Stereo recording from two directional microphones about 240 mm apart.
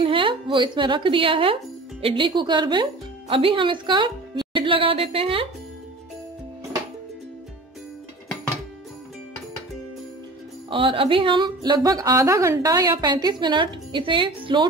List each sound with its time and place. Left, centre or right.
0.0 s speech: right
10.7 s a woman's voice: right